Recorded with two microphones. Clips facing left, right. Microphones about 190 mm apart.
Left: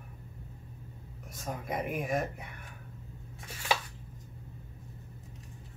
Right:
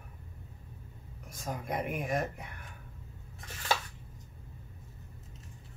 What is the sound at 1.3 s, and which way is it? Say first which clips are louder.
Speech: even; centre (ahead or behind).